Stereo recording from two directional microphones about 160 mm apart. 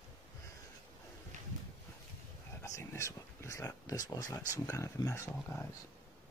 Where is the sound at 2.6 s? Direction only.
15° left (ahead or behind).